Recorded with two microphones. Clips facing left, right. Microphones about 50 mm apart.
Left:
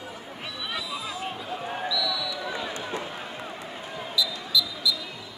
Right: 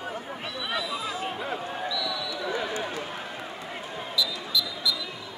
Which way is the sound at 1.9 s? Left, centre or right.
Right.